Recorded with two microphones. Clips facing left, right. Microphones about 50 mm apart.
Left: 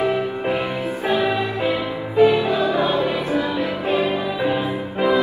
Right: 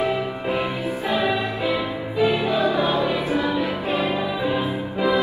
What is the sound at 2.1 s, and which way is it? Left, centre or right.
Music, left.